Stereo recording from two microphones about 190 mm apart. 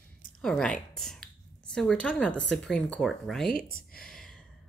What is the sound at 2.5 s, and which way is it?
Speech, 5° left (ahead or behind).